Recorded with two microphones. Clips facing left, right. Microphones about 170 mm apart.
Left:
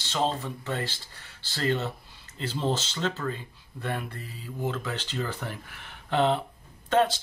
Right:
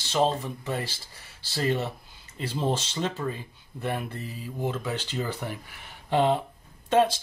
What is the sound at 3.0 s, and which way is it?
Speech, 15° right (ahead or behind).